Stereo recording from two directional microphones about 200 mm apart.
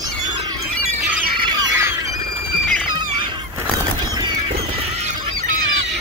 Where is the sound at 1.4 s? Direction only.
20° right (ahead or behind).